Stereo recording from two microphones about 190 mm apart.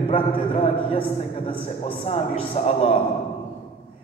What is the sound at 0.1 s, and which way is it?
A man's voice, 30° left (ahead or behind).